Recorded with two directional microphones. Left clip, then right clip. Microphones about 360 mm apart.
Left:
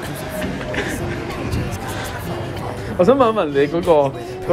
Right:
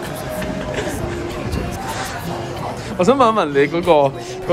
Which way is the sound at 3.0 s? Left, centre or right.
Centre.